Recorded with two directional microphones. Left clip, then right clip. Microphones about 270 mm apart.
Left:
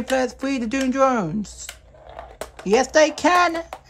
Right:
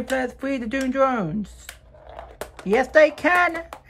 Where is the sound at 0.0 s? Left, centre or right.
Centre.